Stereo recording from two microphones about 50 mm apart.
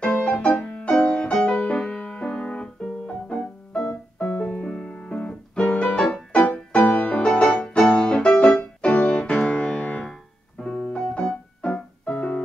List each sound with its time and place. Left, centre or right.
0.0 s music: left
4.2 s keyboard: left
4.7 s music: centre